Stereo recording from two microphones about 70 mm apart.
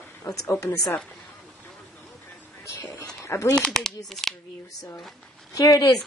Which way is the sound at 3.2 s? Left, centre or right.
Left.